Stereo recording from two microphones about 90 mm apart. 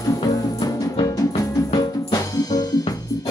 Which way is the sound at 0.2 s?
45° left (ahead or behind).